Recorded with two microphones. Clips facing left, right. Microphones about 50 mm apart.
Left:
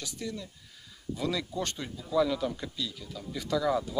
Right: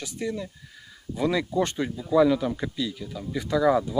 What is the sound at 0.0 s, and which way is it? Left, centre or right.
Speech, right.